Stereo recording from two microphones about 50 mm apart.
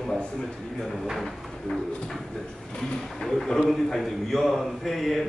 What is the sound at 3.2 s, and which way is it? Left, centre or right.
A man's voice, centre.